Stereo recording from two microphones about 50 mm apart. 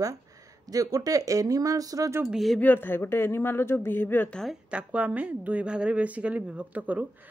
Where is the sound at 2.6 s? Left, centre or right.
Left.